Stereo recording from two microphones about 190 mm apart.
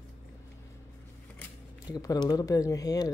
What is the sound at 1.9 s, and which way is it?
Speech, 20° left (ahead or behind).